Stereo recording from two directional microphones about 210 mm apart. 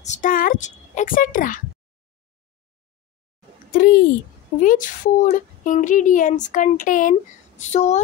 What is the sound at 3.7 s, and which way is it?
A child's voice, 45° left (ahead or behind).